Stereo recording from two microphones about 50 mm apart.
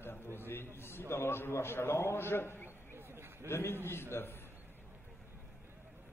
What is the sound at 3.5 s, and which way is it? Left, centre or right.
Speech, left.